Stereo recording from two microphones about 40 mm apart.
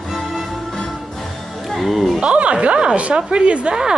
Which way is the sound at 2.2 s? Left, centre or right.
Right.